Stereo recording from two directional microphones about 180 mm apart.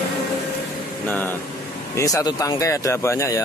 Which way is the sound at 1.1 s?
10° left (ahead or behind).